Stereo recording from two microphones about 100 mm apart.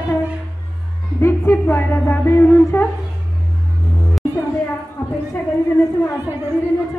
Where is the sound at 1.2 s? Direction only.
20° left (ahead or behind).